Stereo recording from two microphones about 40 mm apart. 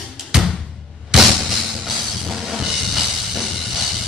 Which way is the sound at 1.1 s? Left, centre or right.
Centre.